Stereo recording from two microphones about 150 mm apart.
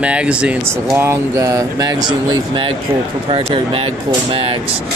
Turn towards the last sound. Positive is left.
turn(degrees=-35)  # may be behind; listen again after turning